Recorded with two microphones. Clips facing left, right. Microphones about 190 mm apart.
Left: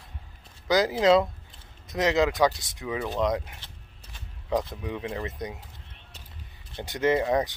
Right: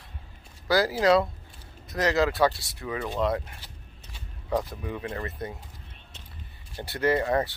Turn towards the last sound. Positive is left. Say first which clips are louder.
# left 1 dB
turn(degrees=15)  # may be behind; listen again after turning